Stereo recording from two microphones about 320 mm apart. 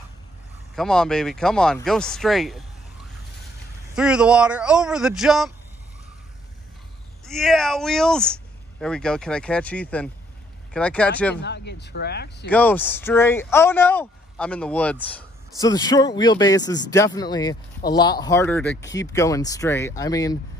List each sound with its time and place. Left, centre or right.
0.7 s speech: centre
3.9 s speech: centre
7.2 s speech: centre
11.4 s speech: left
12.4 s speech: centre